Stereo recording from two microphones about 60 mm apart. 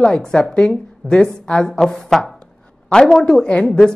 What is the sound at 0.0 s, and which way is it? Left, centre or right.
A woman's voice, centre.